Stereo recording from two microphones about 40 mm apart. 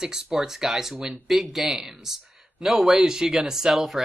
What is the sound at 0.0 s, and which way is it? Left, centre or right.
Speech, centre.